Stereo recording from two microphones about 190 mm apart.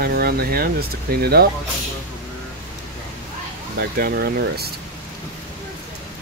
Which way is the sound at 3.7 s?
55° right (ahead or behind).